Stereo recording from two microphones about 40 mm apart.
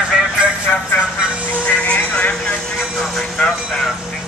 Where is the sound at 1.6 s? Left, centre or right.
Left.